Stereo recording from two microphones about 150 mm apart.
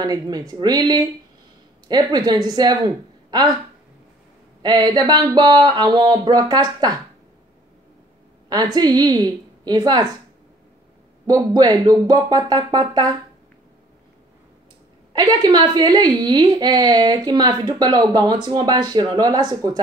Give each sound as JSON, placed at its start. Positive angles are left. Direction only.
{"t": 0.0, "sound": "a woman's voice", "side_deg": -25}
{"t": 4.6, "sound": "a woman's voice", "side_deg": -30}
{"t": 8.7, "sound": "a woman's voice", "side_deg": -25}
{"t": 11.2, "sound": "a woman's voice", "side_deg": -25}
{"t": 15.1, "sound": "a woman's voice", "side_deg": -25}